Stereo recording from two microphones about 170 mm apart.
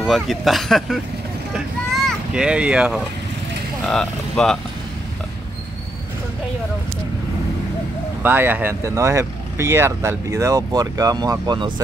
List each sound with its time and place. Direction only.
0.0 s speech: centre (ahead or behind)
1.5 s vehicle: centre (ahead or behind)
3.8 s speech: 5° left (ahead or behind)
8.2 s speech: 10° right (ahead or behind)